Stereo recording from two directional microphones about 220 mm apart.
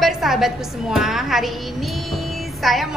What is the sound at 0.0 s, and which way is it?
A woman's voice, centre (ahead or behind).